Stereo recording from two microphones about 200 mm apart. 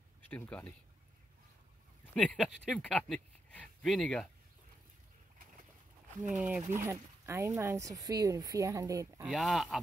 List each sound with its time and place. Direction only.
0.3 s speech: 10° left (ahead or behind)
2.1 s speech: 5° left (ahead or behind)
6.3 s speech: 5° right (ahead or behind)
6.7 s speech: 15° right (ahead or behind)
9.3 s speech: centre (ahead or behind)